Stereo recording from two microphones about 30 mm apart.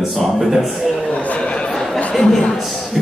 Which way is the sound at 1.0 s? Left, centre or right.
Left.